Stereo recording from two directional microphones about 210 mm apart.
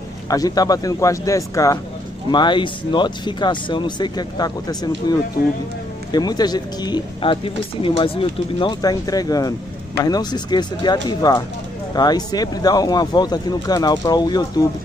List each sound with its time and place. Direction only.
0.3 s a man's voice: 15° left (ahead or behind)